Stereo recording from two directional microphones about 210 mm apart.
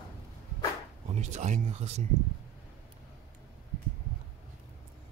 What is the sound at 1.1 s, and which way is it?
Speech, 35° right (ahead or behind).